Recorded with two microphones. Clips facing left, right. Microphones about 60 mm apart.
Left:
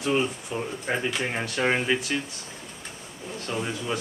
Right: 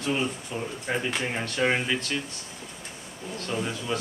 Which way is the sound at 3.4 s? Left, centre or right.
Centre.